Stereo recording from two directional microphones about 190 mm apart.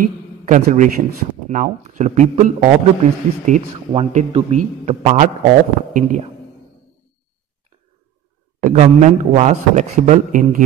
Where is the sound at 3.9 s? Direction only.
30° right (ahead or behind).